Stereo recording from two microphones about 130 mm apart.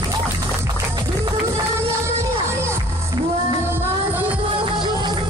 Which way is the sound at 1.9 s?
20° right (ahead or behind).